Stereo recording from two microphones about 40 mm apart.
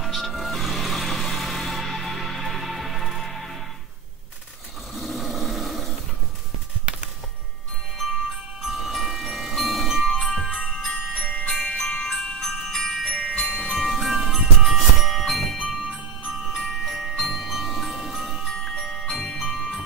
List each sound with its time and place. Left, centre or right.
0.0 s music: centre
4.9 s a sound: centre
8.0 s music: centre
11.8 s jingle bell: centre
13.1 s glockenspiel: left
13.5 s music: left
13.7 s music: centre
16.5 s mallet percussion: centre
18.5 s music: centre